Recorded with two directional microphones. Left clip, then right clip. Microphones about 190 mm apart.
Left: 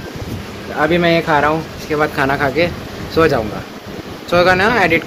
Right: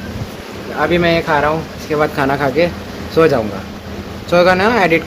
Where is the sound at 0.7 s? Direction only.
30° left (ahead or behind).